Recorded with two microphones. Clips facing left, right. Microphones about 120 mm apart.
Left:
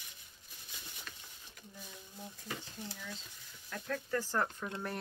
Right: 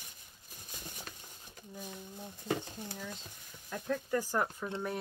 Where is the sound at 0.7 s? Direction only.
45° right (ahead or behind).